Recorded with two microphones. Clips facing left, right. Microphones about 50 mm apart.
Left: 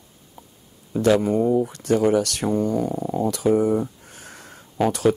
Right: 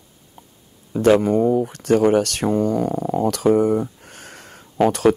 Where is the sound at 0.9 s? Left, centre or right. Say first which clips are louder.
Right 3 dB; right.